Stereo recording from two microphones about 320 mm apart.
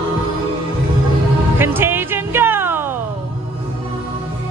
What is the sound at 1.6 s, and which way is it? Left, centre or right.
Music, centre.